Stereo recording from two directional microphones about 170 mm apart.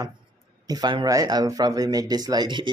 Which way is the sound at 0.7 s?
25° right (ahead or behind).